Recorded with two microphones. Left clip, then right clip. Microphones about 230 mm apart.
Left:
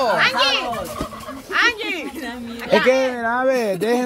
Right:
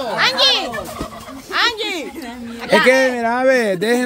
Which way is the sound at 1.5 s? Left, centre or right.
Right.